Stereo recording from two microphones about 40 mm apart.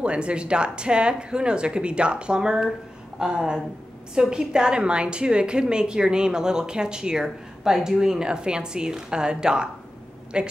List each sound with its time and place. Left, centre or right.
0.0 s a woman's voice: right